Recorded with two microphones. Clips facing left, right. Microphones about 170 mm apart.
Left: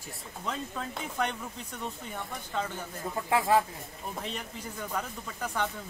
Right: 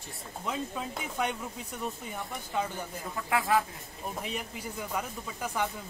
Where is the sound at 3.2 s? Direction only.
25° left (ahead or behind).